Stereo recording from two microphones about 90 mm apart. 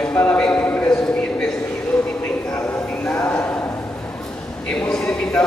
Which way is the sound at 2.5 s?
20° left (ahead or behind).